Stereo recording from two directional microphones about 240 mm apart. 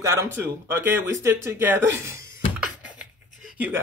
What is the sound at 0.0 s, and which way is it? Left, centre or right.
Speech, centre.